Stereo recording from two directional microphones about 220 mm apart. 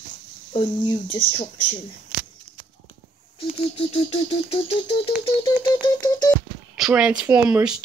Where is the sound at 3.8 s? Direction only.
25° left (ahead or behind).